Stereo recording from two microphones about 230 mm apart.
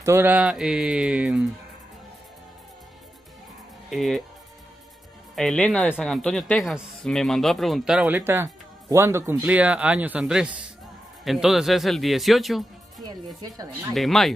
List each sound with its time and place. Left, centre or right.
0.0 s speech: centre
3.9 s speech: centre
5.3 s speech: centre
13.0 s speech: centre
13.9 s speech: centre